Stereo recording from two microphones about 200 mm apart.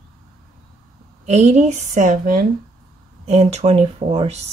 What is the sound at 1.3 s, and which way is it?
Speech, 35° right (ahead or behind).